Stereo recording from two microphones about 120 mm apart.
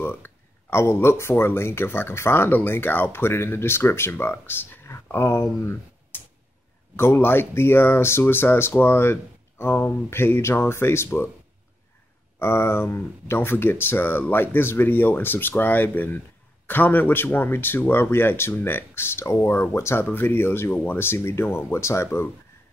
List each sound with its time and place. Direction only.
0.0 s speech: 20° left (ahead or behind)
12.4 s speech: 20° left (ahead or behind)